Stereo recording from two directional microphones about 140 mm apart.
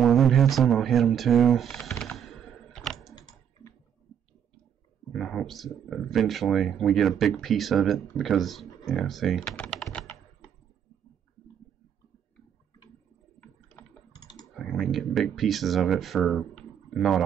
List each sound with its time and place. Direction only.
0.0 s a sound: centre (ahead or behind)
5.1 s speech: centre (ahead or behind)
13.8 s typing: 15° left (ahead or behind)
14.1 s computer keyboard: 30° left (ahead or behind)
14.5 s speech: centre (ahead or behind)